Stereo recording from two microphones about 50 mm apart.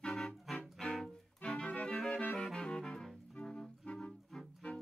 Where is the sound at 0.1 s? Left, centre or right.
Centre.